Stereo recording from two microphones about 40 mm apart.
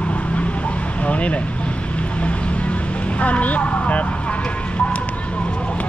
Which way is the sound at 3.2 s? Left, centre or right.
Left.